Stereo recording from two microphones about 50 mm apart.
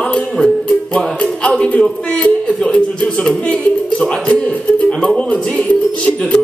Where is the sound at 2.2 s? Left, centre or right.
Centre.